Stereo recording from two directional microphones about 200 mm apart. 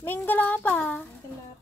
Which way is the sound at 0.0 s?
10° left (ahead or behind).